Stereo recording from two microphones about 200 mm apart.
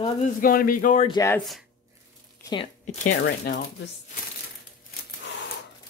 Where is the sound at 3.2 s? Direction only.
60° left (ahead or behind).